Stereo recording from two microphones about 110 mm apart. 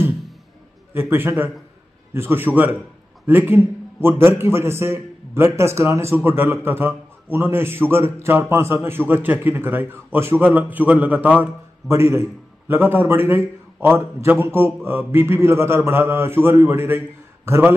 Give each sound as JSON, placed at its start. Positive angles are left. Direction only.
{"t": 0.9, "sound": "a man's voice", "side_deg": -20}
{"t": 11.9, "sound": "a man's voice", "side_deg": -25}